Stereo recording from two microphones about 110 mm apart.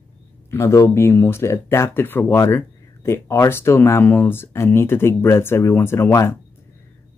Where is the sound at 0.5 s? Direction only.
25° left (ahead or behind).